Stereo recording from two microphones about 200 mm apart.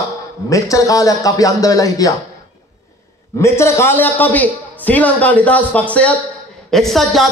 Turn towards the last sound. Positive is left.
turn(degrees=0)  # may be behind; listen again after turning